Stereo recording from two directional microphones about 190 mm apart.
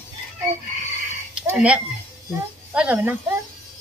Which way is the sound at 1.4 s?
5° right (ahead or behind).